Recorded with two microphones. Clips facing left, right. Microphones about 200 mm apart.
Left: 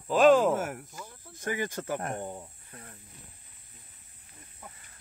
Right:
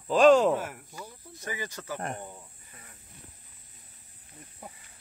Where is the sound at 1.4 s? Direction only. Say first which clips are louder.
Left 5 dB; 55° left (ahead or behind).